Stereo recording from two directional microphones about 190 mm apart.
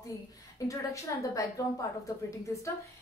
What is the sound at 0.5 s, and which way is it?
A woman's voice, 15° left (ahead or behind).